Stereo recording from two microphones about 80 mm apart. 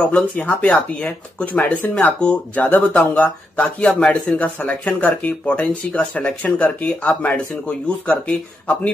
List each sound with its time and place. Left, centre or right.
0.0 s speech: centre